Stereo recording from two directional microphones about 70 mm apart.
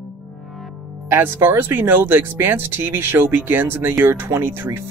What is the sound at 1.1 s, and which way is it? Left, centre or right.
Speech, right.